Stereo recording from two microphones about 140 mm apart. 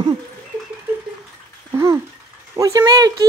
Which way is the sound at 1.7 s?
20° right (ahead or behind).